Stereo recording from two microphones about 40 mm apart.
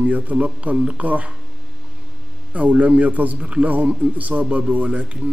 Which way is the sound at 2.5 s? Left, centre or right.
Right.